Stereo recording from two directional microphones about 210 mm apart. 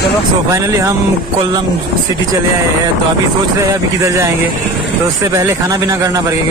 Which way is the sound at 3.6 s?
15° right (ahead or behind).